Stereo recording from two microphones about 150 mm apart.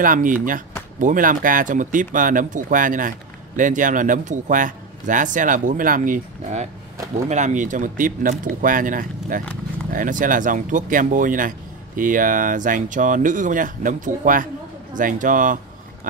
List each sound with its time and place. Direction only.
0.0 s speech: 65° right (ahead or behind)